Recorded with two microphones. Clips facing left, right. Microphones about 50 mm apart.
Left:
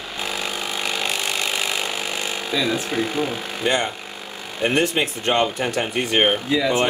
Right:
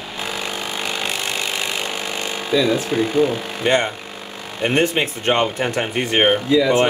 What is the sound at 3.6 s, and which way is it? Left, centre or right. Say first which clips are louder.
Speech: right 3 dB; right.